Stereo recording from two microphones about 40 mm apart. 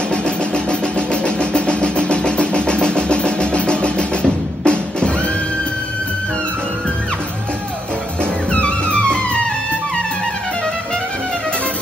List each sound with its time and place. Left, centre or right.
0.1 s vehicle: left
8.5 s music: left